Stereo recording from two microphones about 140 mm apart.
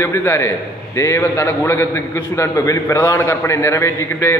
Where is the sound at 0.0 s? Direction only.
15° left (ahead or behind).